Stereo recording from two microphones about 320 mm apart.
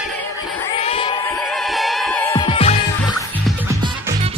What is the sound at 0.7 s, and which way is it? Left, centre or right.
Crowd, centre.